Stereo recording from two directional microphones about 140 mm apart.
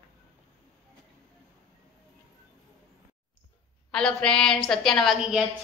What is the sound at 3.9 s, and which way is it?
A woman's voice, 5° left (ahead or behind).